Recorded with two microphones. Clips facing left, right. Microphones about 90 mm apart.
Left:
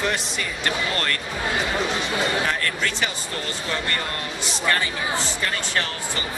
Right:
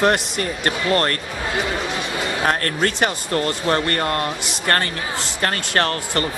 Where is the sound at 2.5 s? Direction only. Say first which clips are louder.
Right 5 dB; 50° right (ahead or behind).